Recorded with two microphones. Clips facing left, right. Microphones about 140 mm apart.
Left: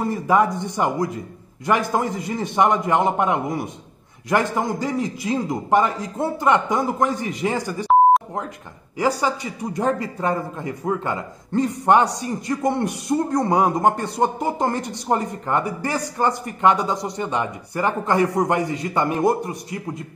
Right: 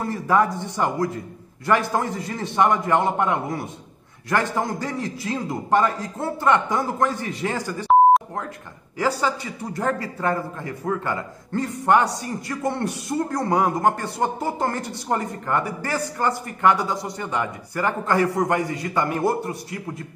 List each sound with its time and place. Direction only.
0.0 s a man's voice: 15° left (ahead or behind)
8.9 s a man's voice: 15° left (ahead or behind)